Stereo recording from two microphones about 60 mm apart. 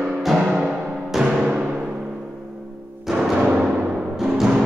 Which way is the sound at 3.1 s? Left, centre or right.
Centre.